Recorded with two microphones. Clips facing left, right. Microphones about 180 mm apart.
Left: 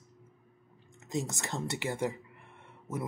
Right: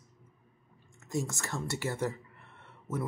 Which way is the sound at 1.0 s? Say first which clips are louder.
Even; 20° left (ahead or behind).